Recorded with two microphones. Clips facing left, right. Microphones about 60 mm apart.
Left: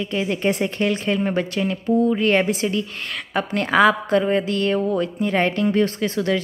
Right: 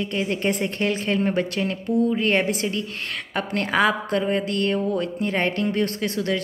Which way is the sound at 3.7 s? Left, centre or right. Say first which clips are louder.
Left 5 dB; centre.